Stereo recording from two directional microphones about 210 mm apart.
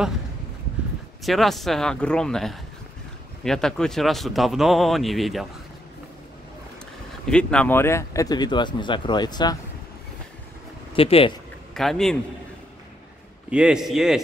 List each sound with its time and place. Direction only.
1.2 s speech: centre (ahead or behind)
7.2 s speech: 5° left (ahead or behind)
11.0 s speech: 25° left (ahead or behind)
11.7 s speech: centre (ahead or behind)
13.5 s speech: 5° right (ahead or behind)